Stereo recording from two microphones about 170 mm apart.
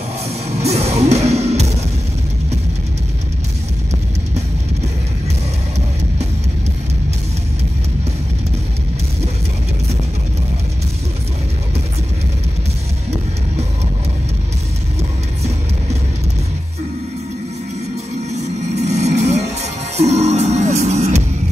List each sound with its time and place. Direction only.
0.7 s music: 40° right (ahead or behind)
18.9 s music: 40° right (ahead or behind)